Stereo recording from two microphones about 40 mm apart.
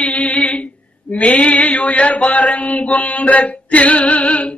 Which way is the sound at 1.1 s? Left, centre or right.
Left.